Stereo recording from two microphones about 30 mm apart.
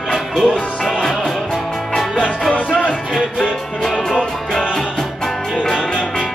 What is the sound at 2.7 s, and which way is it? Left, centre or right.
Music, left.